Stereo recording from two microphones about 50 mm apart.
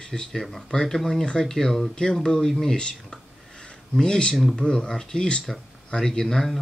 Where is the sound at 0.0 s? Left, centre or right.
Centre.